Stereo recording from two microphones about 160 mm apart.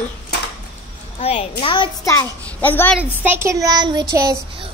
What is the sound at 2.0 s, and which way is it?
Speech, 15° left (ahead or behind).